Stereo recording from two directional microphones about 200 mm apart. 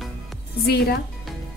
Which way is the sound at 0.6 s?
50° left (ahead or behind).